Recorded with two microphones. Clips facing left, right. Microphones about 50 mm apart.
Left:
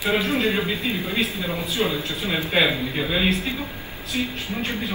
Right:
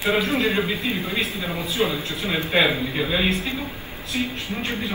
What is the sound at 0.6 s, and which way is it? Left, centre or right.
Speech, centre.